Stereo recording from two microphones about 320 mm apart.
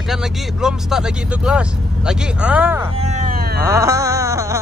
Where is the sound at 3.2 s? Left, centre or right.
Right.